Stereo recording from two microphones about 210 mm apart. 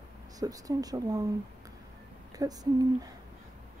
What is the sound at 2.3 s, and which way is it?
Speech, 15° right (ahead or behind).